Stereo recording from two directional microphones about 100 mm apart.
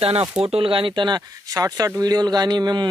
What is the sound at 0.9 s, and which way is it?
Speech, 45° right (ahead or behind).